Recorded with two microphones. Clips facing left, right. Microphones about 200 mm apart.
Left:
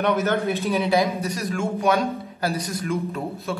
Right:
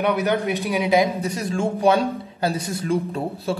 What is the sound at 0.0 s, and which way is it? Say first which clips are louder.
A man's voice: right 1 dB; 15° right (ahead or behind).